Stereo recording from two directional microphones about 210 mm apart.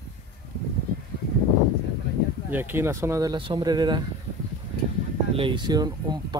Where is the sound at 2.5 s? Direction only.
10° right (ahead or behind).